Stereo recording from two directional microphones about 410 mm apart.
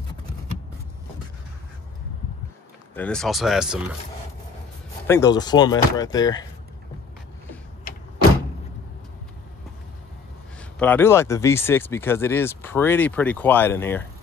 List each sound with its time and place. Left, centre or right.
3.0 s speech: centre
5.0 s speech: centre
7.9 s door: left
10.8 s speech: centre